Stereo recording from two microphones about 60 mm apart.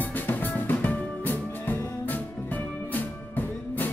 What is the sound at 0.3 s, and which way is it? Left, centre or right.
Music, left.